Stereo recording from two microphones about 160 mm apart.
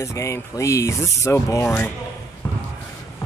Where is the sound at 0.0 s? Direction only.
20° left (ahead or behind).